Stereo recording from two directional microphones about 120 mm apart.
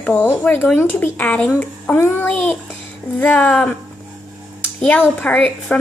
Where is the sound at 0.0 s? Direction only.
10° left (ahead or behind).